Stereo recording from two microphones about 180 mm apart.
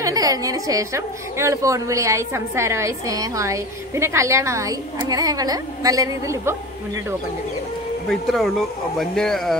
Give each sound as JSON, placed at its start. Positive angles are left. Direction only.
{"t": 0.0, "sound": "a woman's voice", "side_deg": -20}
{"t": 8.1, "sound": "speech", "side_deg": 0}